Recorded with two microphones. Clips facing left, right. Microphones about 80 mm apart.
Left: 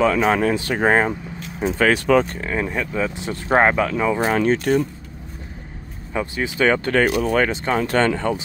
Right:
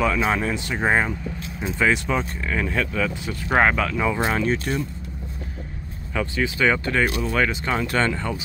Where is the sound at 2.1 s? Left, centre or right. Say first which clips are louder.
Left 9 dB; left.